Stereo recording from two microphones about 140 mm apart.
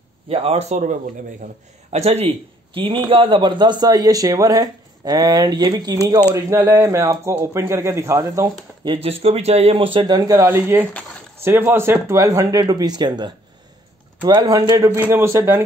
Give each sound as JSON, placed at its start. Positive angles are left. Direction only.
{"t": 0.3, "sound": "a man's voice", "side_deg": -45}
{"t": 8.9, "sound": "speech", "side_deg": -45}
{"t": 10.1, "sound": "a man's voice", "side_deg": -25}
{"t": 10.5, "sound": "a man's voice", "side_deg": -15}
{"t": 14.9, "sound": "a man's voice", "side_deg": -15}